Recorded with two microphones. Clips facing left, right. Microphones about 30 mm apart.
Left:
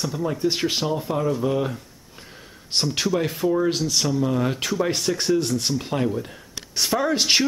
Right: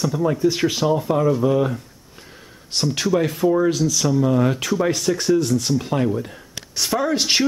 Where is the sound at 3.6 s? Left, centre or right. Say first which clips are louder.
Right 3 dB; left.